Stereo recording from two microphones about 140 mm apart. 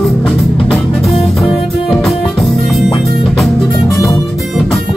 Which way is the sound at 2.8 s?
30° left (ahead or behind).